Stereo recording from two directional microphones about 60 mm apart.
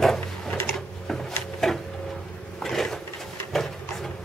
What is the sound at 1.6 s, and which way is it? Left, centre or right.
Printer, centre.